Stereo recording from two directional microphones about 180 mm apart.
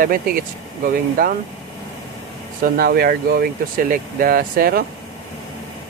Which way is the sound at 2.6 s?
55° right (ahead or behind).